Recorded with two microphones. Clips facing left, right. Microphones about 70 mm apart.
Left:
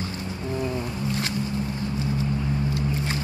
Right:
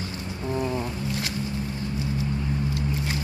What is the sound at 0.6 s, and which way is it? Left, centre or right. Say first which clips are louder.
Wild animals: right 1 dB; centre.